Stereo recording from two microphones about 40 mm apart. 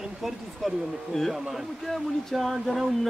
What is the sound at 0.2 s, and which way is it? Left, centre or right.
Speech, centre.